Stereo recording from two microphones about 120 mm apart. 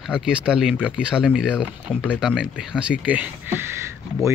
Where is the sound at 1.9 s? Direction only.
10° left (ahead or behind).